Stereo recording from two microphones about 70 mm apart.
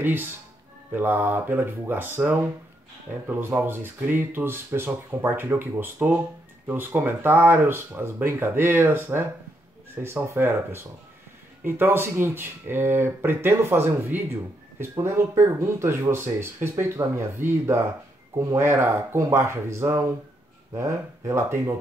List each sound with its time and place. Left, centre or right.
0.0 s speech: right
18.3 s speech: right
18.6 s speech: right